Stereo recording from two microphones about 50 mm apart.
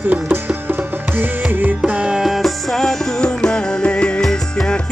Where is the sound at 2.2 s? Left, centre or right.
Centre; by 4.2 s left.